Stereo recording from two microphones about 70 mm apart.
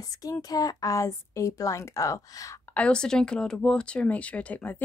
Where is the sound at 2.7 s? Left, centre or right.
Centre.